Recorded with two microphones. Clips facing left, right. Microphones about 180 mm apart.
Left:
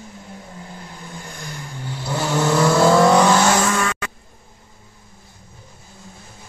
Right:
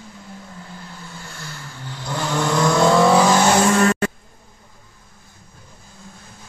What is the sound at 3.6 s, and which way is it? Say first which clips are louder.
Vehicle: right 5 dB; 35° right (ahead or behind).